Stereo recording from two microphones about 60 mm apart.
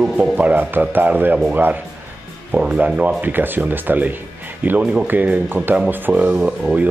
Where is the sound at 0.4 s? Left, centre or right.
Right.